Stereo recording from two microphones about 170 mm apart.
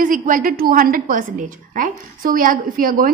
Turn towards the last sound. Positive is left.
turn(degrees=-55)  # may be behind; listen again after turning